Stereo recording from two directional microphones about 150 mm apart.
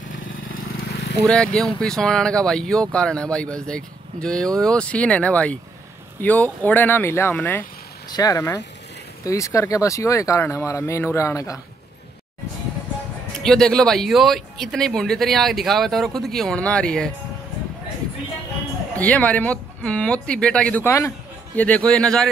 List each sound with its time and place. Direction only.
1.2 s speech: 5° left (ahead or behind)
8.1 s speech: 25° left (ahead or behind)
13.4 s speech: 5° left (ahead or behind)
18.9 s speech: 10° left (ahead or behind)